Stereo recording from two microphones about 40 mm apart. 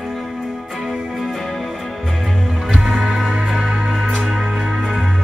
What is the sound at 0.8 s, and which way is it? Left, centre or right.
Music, centre.